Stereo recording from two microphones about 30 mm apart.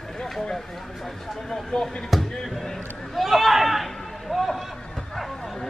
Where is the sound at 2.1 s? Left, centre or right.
Centre.